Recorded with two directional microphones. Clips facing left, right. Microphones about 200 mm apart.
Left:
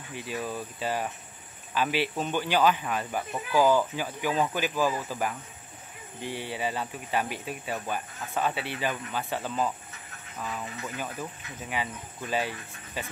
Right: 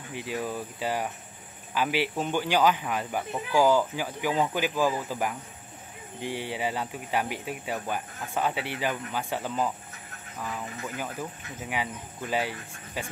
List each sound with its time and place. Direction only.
0.1 s speech: 15° right (ahead or behind)